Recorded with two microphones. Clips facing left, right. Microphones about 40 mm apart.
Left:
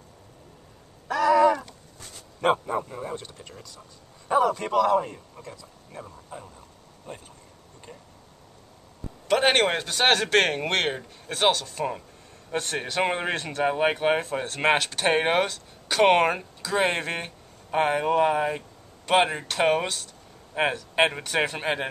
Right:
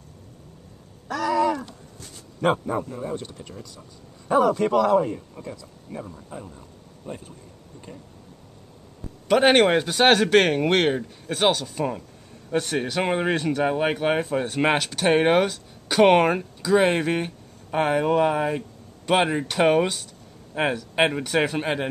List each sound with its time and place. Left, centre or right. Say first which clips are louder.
1.0 s a sound: left 4 dB; centre
2.4 s speech: right 1 dB; centre
3.2 s speech: right 5 dB; centre
9.3 s speech: right 4 dB; centre